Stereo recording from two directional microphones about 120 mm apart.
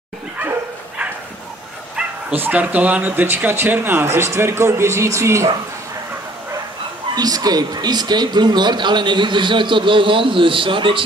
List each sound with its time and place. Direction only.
0.4 s dog: 15° right (ahead or behind)
2.0 s speech: 15° right (ahead or behind)
7.2 s speech: 35° right (ahead or behind)